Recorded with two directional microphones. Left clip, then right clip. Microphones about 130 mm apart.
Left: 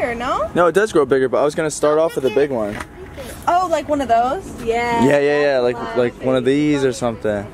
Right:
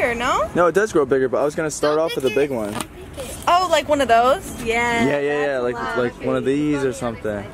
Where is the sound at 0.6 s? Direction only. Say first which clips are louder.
Left 4 dB; 10° left (ahead or behind).